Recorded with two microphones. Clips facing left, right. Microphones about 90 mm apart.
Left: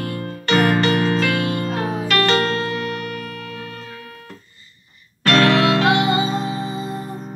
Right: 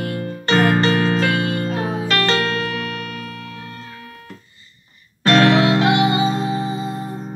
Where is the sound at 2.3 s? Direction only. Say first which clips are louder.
Left 1 dB; 30° left (ahead or behind).